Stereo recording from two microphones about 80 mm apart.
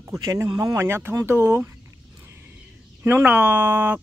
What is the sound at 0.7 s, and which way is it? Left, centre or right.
Speech, right.